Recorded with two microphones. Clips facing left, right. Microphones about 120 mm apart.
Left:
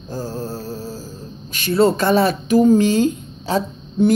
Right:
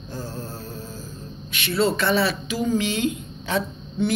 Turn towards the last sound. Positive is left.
turn(degrees=40)  # may be behind; listen again after turning